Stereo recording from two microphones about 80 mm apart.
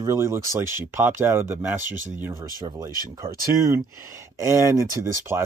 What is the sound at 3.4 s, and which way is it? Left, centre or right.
Speech, right.